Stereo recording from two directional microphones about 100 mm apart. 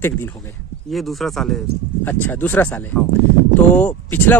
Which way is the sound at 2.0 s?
20° left (ahead or behind).